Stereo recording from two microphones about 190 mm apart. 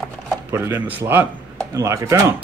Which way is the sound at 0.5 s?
10° right (ahead or behind).